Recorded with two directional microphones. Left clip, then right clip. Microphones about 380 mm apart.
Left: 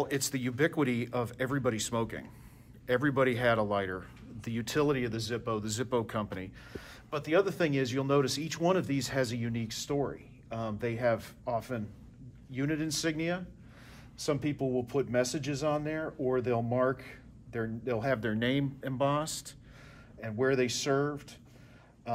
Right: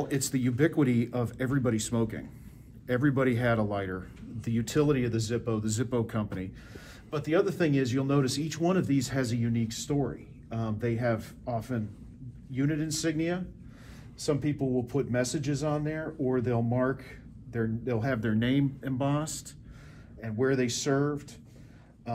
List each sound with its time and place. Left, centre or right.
0.0 s a man's voice: centre